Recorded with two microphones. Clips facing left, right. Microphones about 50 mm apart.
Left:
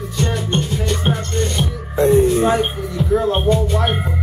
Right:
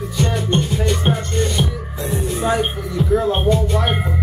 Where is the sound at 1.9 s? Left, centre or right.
Left.